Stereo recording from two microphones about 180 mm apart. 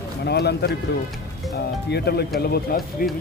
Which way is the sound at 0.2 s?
65° left (ahead or behind).